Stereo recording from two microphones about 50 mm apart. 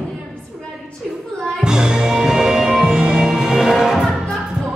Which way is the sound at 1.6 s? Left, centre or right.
Centre.